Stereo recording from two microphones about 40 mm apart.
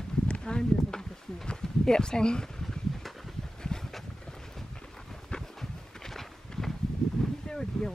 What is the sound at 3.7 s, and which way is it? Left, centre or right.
Boat, centre.